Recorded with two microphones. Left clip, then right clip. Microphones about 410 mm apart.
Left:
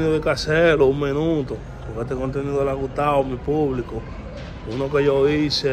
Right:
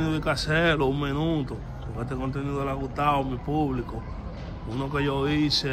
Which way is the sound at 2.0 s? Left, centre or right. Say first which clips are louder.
Left 7 dB; left.